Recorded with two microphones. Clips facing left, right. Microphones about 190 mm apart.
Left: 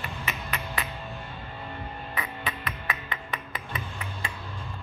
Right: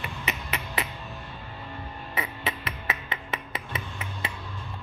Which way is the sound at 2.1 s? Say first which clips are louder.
Right 3 dB; 25° right (ahead or behind).